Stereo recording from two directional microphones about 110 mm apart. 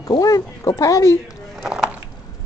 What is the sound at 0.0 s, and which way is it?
Speech, 35° left (ahead or behind).